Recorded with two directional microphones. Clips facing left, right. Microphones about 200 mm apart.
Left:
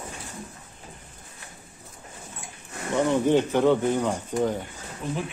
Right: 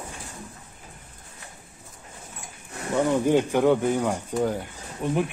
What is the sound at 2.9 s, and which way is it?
Speech, 10° right (ahead or behind).